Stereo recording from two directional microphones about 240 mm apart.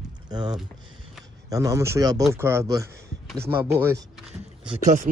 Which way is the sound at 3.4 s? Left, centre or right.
Centre.